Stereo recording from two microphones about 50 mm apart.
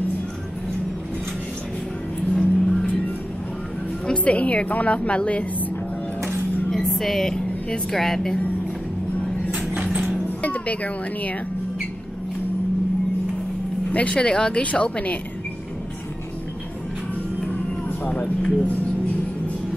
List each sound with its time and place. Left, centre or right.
2.3 s music: centre
4.1 s a woman's voice: left
6.9 s a woman's voice: centre
10.4 s speech: left
13.9 s a woman's voice: left
18.1 s a woman's voice: left